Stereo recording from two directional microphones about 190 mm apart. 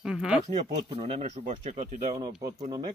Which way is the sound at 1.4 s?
40° right (ahead or behind).